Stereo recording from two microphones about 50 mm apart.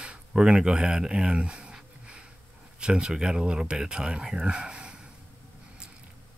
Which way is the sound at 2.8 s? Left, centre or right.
Centre.